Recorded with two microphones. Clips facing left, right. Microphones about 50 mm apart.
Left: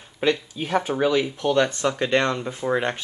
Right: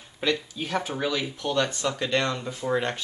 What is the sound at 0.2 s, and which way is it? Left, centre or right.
Speech, left.